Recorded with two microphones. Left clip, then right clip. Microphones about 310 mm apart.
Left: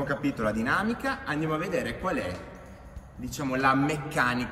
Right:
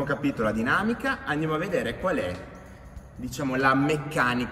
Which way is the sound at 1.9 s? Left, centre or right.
Centre.